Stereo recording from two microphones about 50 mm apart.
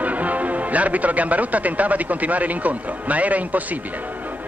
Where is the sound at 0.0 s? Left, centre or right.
Right.